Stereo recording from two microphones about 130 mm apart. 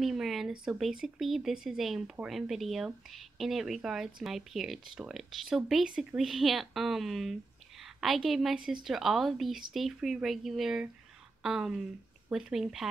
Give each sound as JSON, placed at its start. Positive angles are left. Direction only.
{"t": 0.0, "sound": "a woman's voice", "side_deg": 0}